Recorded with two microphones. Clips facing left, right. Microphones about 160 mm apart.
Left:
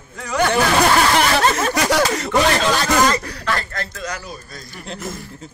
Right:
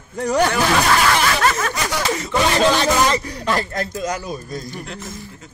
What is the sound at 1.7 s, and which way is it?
Speech, 70° left (ahead or behind).